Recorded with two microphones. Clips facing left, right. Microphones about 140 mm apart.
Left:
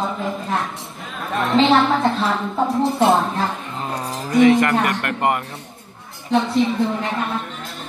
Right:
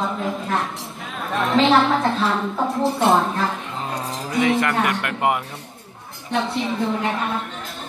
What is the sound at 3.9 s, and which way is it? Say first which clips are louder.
Speech: left 5 dB; centre (ahead or behind).